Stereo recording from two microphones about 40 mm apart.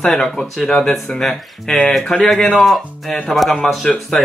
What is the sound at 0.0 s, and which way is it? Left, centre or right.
Speech, centre.